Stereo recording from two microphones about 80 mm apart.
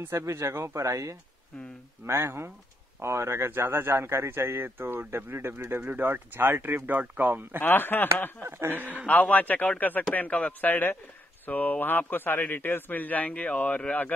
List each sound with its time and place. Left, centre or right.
0.0 s a man's voice: right
7.6 s a man's voice: left
8.4 s a man's voice: right
9.0 s a man's voice: centre